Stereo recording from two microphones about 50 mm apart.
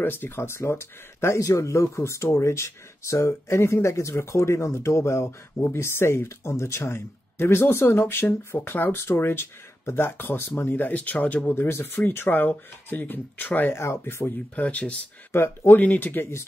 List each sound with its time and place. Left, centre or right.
0.0 s speech: left
0.5 s speech: left
4.1 s speech: left
11.7 s speech: left
13.7 s speech: left
14.5 s speech: left
15.3 s speech: left
15.8 s speech: left